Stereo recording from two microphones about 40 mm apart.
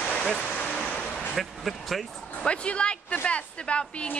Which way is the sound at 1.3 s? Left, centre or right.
Centre.